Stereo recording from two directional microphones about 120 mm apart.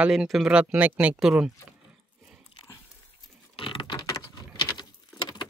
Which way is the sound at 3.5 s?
45° left (ahead or behind).